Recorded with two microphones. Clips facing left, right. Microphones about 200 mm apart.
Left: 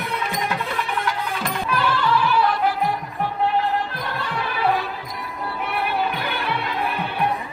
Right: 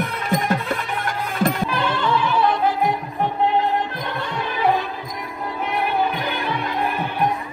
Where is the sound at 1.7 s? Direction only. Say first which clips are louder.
Even; 25° right (ahead or behind).